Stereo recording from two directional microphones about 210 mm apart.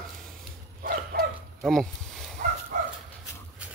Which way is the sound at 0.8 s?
45° right (ahead or behind).